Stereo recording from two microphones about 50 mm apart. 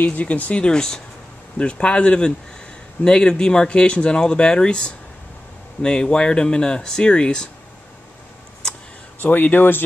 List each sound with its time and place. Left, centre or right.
0.0 s speech: left
9.2 s speech: left